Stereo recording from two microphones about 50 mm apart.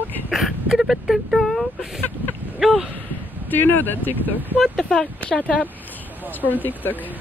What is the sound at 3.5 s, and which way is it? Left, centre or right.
Speech, left.